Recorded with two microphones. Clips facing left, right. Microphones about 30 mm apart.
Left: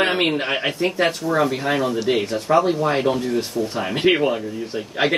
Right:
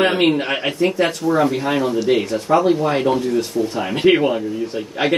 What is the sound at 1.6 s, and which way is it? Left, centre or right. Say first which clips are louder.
Speech: right 2 dB; centre.